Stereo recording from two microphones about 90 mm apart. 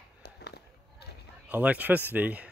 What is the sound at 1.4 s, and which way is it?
Speech, 15° right (ahead or behind).